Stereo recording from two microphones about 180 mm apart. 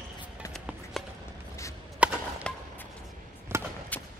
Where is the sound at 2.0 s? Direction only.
5° right (ahead or behind).